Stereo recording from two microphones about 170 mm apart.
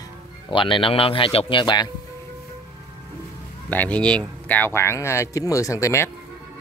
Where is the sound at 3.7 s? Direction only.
10° left (ahead or behind).